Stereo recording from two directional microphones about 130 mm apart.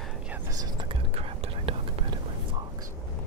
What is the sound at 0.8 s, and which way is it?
Whispering, 50° right (ahead or behind).